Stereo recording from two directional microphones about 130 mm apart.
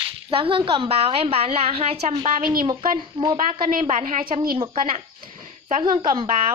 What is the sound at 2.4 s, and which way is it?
A child's voice, 90° right.